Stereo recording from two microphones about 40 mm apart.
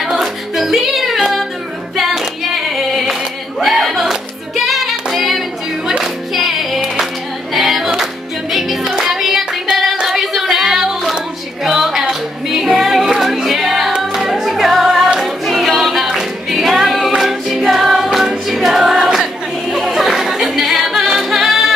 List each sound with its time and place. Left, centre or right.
0.0 s music: centre
2.0 s singing: centre
5.9 s music: centre
7.5 s singing: centre
8.0 s music: centre
8.8 s music: centre
9.1 s hands: centre
10.0 s a sound: centre
11.6 s music: centre
19.7 s a capella: centre